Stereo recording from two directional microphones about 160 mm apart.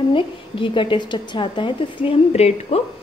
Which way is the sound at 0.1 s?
30° left (ahead or behind).